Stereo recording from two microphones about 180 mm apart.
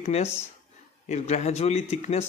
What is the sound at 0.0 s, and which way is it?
Speech, 35° left (ahead or behind).